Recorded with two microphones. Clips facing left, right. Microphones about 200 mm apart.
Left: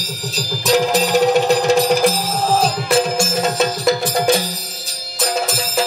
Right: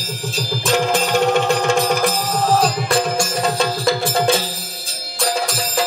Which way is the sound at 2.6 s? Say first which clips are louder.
Left 2 dB; 25° left (ahead or behind).